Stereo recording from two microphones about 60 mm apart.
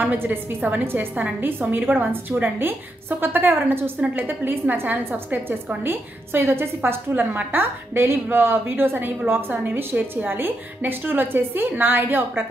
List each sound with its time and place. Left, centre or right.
0.0 s a woman's voice: right